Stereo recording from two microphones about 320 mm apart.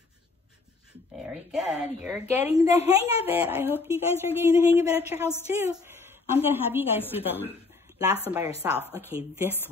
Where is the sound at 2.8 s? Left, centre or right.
Centre.